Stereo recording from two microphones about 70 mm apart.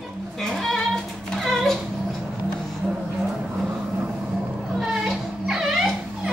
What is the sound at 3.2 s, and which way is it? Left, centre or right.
Vehicle, centre.